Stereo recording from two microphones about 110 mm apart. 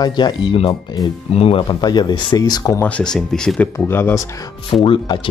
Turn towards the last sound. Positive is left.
turn(degrees=50)  # may be behind; listen again after turning